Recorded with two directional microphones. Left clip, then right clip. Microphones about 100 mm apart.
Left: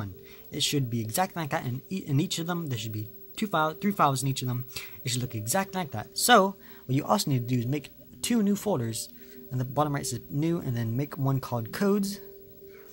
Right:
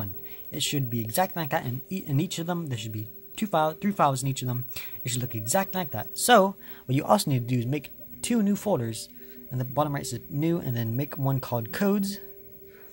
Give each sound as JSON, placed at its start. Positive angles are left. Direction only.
{"t": 0.0, "sound": "speech", "side_deg": -10}
{"t": 6.9, "sound": "speech", "side_deg": -25}